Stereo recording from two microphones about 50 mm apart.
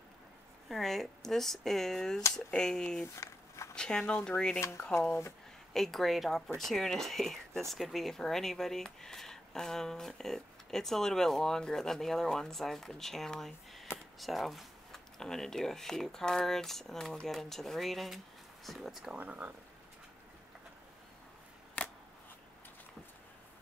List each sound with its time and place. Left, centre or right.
0.7 s speech: centre
3.2 s a sound: left
3.7 s speech: centre
4.6 s speech: left
5.7 s speech: centre
19.1 s speech: right
21.8 s scissors: left